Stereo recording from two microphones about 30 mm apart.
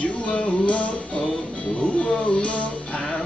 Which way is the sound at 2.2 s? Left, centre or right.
Left.